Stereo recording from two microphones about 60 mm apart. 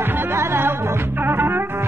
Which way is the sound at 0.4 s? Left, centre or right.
Right.